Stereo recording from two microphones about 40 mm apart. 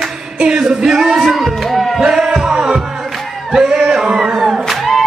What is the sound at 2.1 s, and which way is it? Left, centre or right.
Music, centre.